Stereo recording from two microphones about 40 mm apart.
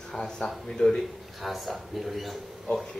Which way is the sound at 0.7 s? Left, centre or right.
Centre.